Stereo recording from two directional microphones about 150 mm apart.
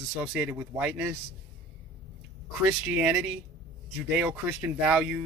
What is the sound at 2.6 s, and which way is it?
Speech, 10° right (ahead or behind).